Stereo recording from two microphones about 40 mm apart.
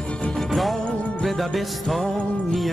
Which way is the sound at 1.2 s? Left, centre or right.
Centre.